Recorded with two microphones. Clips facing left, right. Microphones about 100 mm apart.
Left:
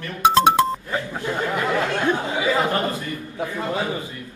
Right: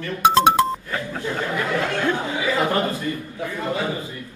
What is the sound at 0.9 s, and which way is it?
Speech, 20° left (ahead or behind).